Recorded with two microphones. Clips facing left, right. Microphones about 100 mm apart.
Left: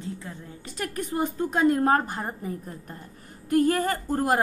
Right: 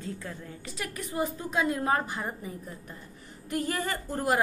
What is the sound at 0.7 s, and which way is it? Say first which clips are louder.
A woman's voice: left 4 dB; 45° left (ahead or behind).